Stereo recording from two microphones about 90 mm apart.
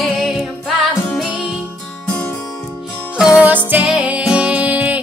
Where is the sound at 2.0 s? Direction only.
20° left (ahead or behind).